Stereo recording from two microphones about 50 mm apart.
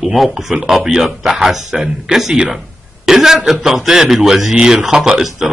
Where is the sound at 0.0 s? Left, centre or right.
Centre.